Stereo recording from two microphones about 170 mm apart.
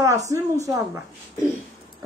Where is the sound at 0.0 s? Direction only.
20° right (ahead or behind).